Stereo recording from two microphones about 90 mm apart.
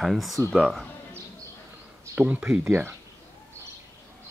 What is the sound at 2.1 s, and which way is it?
Speech, 15° right (ahead or behind).